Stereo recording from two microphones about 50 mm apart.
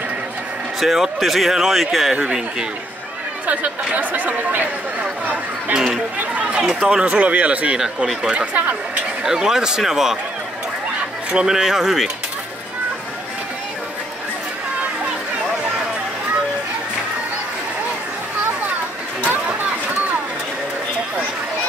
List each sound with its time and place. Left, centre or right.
0.7 s speech: centre
2.1 s speech: centre
3.4 s speech: right
6.3 s speech: right
9.2 s speech: centre
11.3 s speech: centre